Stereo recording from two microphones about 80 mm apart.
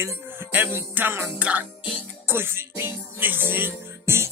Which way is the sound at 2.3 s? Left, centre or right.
Right.